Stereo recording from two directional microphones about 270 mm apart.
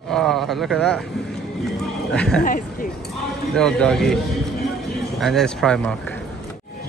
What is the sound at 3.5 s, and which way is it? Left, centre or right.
Speech, centre.